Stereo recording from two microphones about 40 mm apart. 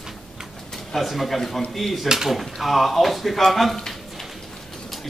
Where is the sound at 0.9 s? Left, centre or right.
Centre.